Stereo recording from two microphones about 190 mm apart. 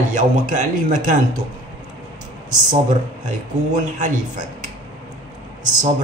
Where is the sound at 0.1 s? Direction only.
40° right (ahead or behind).